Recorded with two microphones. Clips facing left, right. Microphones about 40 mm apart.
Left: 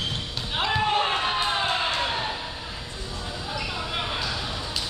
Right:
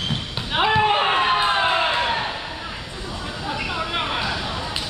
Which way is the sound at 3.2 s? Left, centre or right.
Right.